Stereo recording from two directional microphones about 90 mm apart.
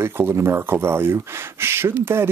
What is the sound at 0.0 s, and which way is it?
Speech, 30° right (ahead or behind).